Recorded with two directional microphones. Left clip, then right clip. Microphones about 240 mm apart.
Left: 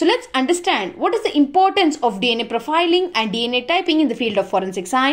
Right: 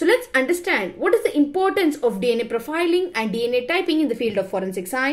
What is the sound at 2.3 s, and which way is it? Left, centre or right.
Speech, left.